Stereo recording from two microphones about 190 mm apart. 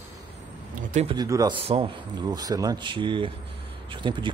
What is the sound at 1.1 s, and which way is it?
Speech, 20° right (ahead or behind).